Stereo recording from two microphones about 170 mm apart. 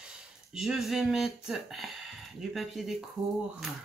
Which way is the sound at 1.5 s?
Centre (ahead or behind).